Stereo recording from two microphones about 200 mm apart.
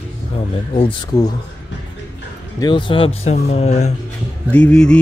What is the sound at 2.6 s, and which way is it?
Speech, 25° left (ahead or behind).